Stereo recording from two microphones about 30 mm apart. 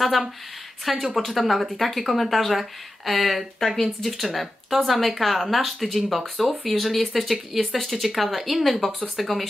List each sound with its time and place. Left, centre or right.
0.0 s speech: centre